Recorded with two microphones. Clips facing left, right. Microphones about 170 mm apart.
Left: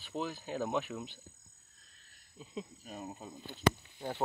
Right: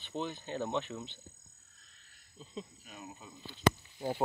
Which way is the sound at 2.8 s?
40° left (ahead or behind).